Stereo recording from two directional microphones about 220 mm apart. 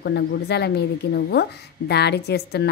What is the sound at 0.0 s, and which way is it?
A woman's voice, 50° left (ahead or behind).